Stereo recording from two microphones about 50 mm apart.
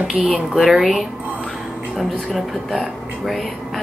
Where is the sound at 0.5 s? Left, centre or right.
Centre.